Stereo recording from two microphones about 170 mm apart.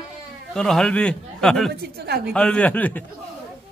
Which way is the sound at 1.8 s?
70° right (ahead or behind).